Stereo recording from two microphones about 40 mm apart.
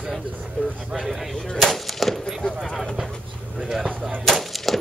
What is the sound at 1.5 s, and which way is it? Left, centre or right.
Gunshot, centre.